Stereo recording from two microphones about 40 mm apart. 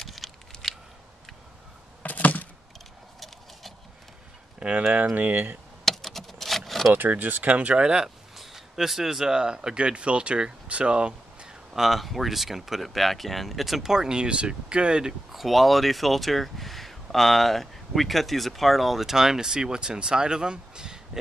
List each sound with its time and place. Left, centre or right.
0.0 s a sound: centre
2.0 s a sound: left
4.6 s speech: right
5.1 s speech: right
5.9 s keys jangling: centre
6.9 s speech: right
7.5 s speech: right
7.8 s speech: right
8.4 s speech: centre; by 11.5 s right
11.7 s speech: centre
13.9 s speech: centre
15.3 s speech: centre